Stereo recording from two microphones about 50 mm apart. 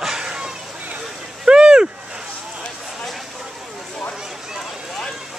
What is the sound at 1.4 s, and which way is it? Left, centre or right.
Boat, centre.